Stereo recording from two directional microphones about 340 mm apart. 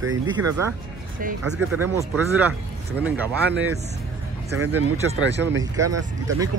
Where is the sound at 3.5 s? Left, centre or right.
Right.